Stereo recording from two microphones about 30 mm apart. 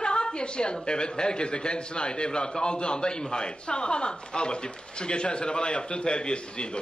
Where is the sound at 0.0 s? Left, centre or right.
Left.